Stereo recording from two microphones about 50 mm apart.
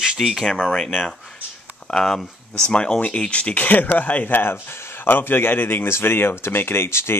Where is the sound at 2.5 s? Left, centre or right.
Centre; by 5.0 s left.